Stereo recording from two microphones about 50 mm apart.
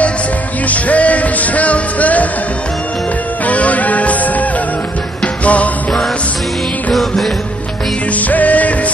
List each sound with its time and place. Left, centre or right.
0.7 s music: left
3.4 s music: left
6.9 s music: centre
8.1 s music: left